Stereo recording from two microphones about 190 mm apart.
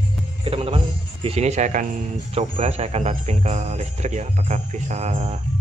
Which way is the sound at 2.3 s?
30° right (ahead or behind).